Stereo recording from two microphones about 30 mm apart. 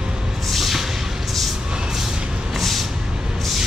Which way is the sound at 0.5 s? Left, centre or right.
Centre.